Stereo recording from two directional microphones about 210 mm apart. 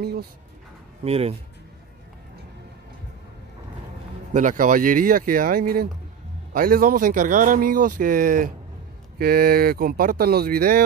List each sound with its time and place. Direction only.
0.0 s speech: 50° right (ahead or behind)
1.0 s speech: 30° right (ahead or behind)
4.3 s a man's voice: 40° right (ahead or behind)